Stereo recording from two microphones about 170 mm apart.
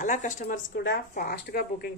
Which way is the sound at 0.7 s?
65° left (ahead or behind).